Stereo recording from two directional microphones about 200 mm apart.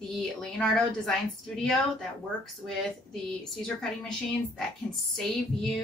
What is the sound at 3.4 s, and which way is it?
A woman's voice, centre (ahead or behind).